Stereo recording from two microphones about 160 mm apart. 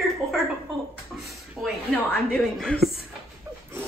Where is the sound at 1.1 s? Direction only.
5° right (ahead or behind).